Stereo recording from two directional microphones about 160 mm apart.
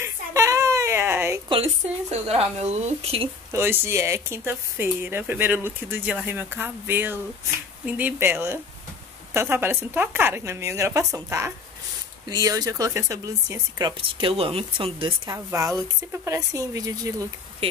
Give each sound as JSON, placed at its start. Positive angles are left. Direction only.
{"t": 0.0, "sound": "a sound", "side_deg": -20}
{"t": 1.5, "sound": "speech", "side_deg": -40}
{"t": 3.5, "sound": "speech", "side_deg": -15}
{"t": 14.0, "sound": "speech", "side_deg": -35}
{"t": 15.2, "sound": "speech", "side_deg": -20}